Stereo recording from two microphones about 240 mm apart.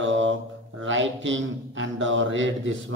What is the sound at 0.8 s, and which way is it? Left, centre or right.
Speech, right.